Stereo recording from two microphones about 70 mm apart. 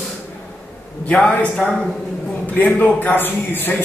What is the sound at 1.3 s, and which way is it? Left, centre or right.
A man's voice, centre.